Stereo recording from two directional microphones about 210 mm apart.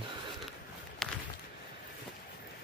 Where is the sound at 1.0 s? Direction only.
5° left (ahead or behind).